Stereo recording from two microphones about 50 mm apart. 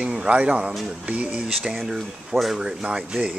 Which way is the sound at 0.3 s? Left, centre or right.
Right.